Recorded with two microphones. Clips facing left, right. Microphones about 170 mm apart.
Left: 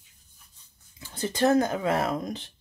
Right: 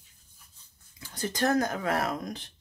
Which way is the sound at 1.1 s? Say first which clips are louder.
Left 4 dB; 25° left (ahead or behind).